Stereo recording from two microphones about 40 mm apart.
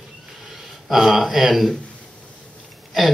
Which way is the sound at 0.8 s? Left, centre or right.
Centre.